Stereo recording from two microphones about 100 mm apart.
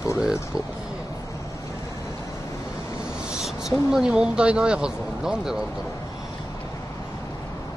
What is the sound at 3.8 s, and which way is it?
Speech, 5° right (ahead or behind).